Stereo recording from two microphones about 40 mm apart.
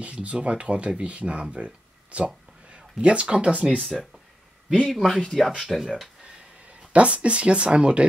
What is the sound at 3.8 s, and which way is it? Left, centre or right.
Speech, centre.